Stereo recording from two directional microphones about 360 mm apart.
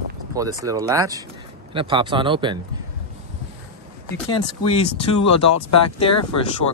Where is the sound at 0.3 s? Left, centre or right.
Centre.